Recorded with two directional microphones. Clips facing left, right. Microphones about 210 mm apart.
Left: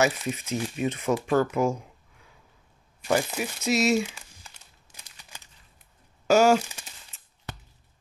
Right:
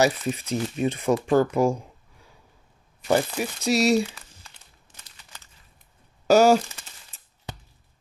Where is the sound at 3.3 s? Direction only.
35° right (ahead or behind).